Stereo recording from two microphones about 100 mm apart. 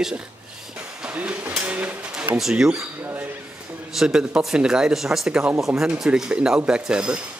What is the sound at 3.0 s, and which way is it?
Speech, 20° right (ahead or behind).